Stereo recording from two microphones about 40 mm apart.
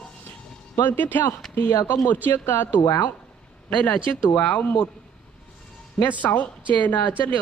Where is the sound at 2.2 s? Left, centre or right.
Left.